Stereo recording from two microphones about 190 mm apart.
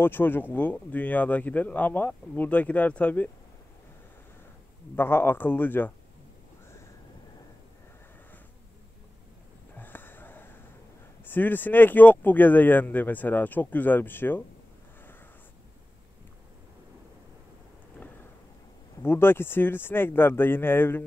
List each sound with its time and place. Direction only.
0.0 s speech: 10° left (ahead or behind)
4.9 s speech: 10° left (ahead or behind)
9.8 s wheeze: 10° left (ahead or behind)
11.2 s speech: 10° left (ahead or behind)
19.0 s speech: 10° left (ahead or behind)